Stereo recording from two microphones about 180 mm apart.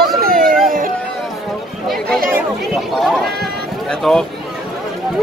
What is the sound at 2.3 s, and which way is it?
Chatter, centre (ahead or behind).